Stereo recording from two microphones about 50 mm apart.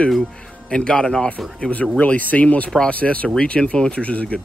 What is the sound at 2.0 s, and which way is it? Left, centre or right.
Speech, left.